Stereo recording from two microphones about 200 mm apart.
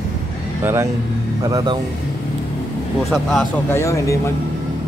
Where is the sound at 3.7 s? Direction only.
15° left (ahead or behind).